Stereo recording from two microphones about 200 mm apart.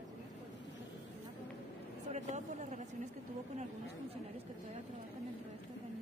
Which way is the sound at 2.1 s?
35° right (ahead or behind).